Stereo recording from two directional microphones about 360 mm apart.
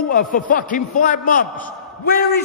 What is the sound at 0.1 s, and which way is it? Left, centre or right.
A man's voice, left.